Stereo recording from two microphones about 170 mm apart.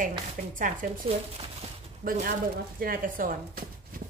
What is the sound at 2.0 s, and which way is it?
Speech, 55° right (ahead or behind).